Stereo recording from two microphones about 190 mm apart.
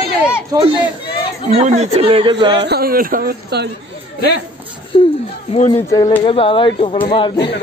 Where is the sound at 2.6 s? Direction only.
55° right (ahead or behind).